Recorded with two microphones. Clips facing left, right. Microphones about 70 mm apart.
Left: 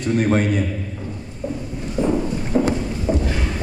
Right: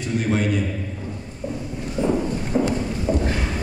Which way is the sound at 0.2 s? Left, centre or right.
Left.